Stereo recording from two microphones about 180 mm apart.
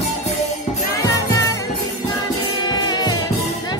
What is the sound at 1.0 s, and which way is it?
Music, 20° left (ahead or behind).